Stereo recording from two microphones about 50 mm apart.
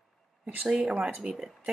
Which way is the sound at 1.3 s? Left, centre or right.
Centre.